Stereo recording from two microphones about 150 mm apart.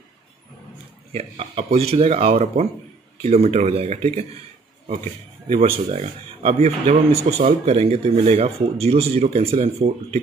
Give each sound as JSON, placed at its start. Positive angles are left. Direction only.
{"t": 1.1, "sound": "speech", "side_deg": -45}
{"t": 5.5, "sound": "speech", "side_deg": -40}